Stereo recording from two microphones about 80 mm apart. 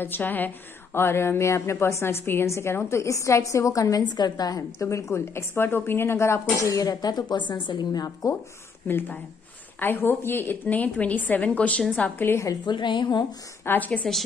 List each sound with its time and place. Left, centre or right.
0.0 s a woman's voice: left
4.0 s a woman's voice: left
4.7 s a woman's voice: left
8.8 s a woman's voice: left
12.3 s a woman's voice: left
12.6 s a woman's voice: left
13.7 s a woman's voice: left